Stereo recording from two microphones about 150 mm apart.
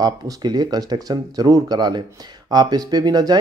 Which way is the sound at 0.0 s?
25° right (ahead or behind).